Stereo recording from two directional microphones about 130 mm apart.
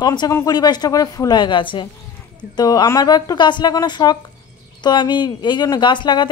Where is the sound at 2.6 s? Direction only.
30° left (ahead or behind).